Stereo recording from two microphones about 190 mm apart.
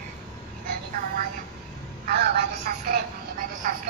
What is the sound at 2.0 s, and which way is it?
Telephone, 55° right (ahead or behind).